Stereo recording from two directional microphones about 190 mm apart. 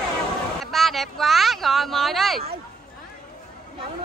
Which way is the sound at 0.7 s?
Centre (ahead or behind).